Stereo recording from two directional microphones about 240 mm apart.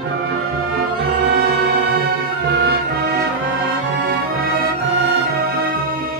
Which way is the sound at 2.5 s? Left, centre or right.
Right.